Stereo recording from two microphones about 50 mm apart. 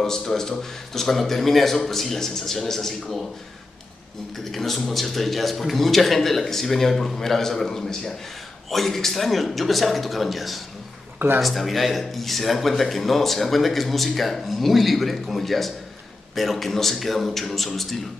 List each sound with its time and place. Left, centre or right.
0.0 s speech: centre
4.5 s speech: centre
11.1 s speech: right
11.4 s speech: centre